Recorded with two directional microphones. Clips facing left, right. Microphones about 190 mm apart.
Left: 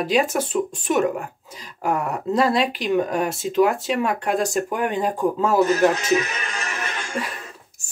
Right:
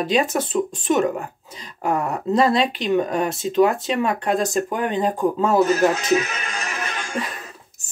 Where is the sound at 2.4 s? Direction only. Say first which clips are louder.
Right 1 dB; 5° left (ahead or behind).